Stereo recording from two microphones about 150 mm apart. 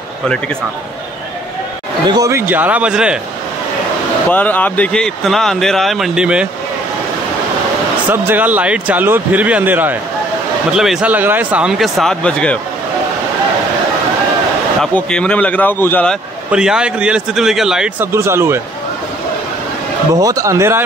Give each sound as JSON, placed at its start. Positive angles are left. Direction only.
{"t": 2.0, "sound": "speech", "side_deg": -25}
{"t": 4.3, "sound": "speech", "side_deg": 10}
{"t": 8.1, "sound": "speech", "side_deg": -15}
{"t": 14.8, "sound": "a man's voice", "side_deg": 5}
{"t": 16.4, "sound": "speech", "side_deg": -5}
{"t": 18.1, "sound": "speech", "side_deg": -20}
{"t": 20.2, "sound": "speech", "side_deg": -25}